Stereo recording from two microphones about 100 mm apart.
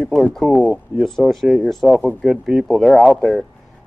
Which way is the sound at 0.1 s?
Centre (ahead or behind).